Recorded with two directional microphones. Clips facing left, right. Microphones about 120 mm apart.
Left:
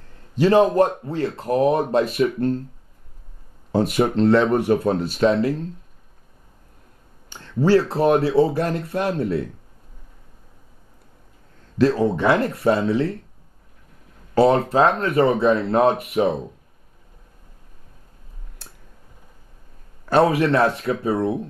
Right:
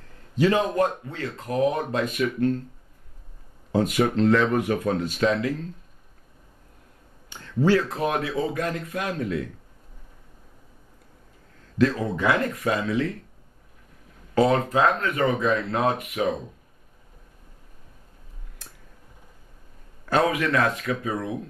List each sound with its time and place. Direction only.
0.4 s speech: 30° left (ahead or behind)
3.7 s speech: 35° left (ahead or behind)
7.3 s speech: 35° left (ahead or behind)
11.8 s speech: 30° left (ahead or behind)
14.3 s speech: 30° left (ahead or behind)
20.1 s speech: 30° left (ahead or behind)